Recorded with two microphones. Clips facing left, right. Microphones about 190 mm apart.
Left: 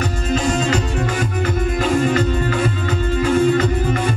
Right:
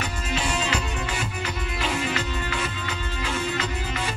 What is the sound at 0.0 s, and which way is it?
Music, 40° left (ahead or behind).